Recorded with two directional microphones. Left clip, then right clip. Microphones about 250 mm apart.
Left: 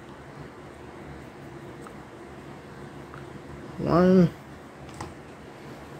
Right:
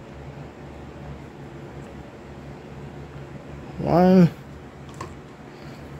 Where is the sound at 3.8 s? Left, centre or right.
Centre.